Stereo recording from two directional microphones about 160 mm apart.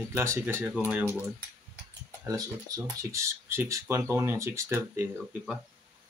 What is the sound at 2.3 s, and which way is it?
Speech, 20° right (ahead or behind).